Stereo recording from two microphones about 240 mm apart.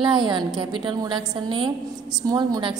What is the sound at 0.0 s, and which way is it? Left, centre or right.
A woman's voice, centre.